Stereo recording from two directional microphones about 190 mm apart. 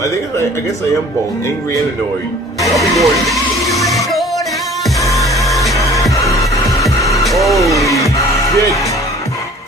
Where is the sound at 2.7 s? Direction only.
Centre (ahead or behind).